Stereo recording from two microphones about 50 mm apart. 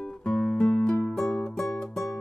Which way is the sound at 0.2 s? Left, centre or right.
Centre.